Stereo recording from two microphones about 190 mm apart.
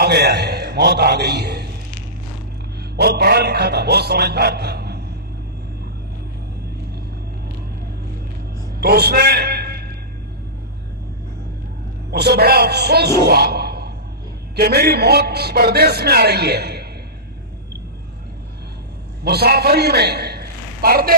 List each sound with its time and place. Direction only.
0.0 s a man's voice: 60° right (ahead or behind)
3.0 s a man's voice: 55° right (ahead or behind)
8.7 s a sound: 55° right (ahead or behind)
12.1 s a man's voice: 55° right (ahead or behind)
19.2 s a man's voice: 55° right (ahead or behind)